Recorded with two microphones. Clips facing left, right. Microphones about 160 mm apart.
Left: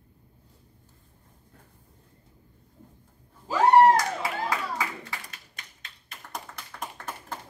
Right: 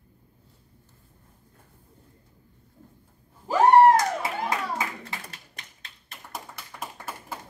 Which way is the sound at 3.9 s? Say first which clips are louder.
Right 2 dB; 20° right (ahead or behind).